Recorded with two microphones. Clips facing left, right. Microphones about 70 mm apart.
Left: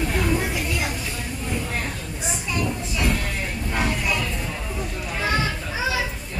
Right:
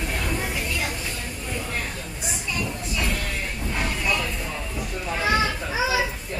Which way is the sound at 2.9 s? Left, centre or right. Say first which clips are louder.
Left 2 dB; centre.